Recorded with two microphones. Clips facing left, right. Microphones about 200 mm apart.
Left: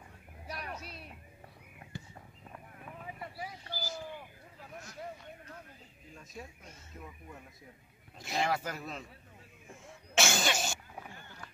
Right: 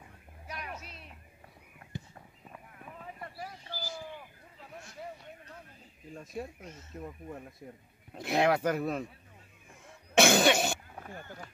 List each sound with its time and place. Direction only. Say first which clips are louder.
1.9 s walk: right 3 dB; 20° right (ahead or behind)
2.5 s a sound: even; 5° left (ahead or behind)
6.4 s speech: right 8 dB; 55° right (ahead or behind)
8.1 s speech: right 6 dB; 60° right (ahead or behind)
10.1 s cough: right 8 dB; 60° right (ahead or behind)